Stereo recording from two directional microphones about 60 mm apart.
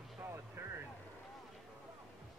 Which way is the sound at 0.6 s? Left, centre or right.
Right.